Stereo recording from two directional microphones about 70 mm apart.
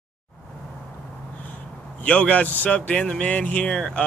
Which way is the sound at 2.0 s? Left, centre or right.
Centre.